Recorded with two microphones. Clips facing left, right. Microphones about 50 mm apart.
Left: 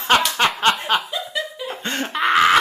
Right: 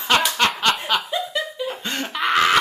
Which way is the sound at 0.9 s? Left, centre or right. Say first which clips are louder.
Left 2 dB; left.